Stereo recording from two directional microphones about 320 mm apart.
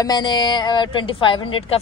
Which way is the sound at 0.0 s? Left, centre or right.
Centre.